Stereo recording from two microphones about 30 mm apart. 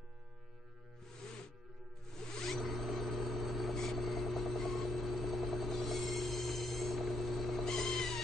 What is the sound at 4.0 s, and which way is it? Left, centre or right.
Vehicle, centre.